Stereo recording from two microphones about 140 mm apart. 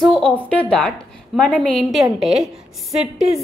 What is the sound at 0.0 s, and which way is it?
A woman's voice, centre (ahead or behind).